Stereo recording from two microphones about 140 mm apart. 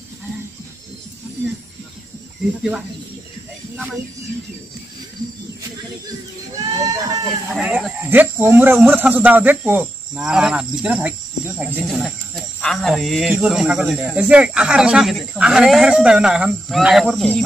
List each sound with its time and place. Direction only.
6.8 s speech: 25° right (ahead or behind)
7.5 s speech: 5° right (ahead or behind)